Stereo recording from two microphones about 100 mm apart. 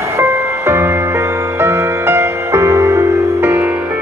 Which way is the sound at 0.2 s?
25° right (ahead or behind).